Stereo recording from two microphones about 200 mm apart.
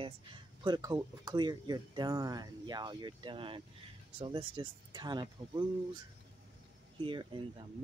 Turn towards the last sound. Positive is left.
turn(degrees=-25)  # may be behind; listen again after turning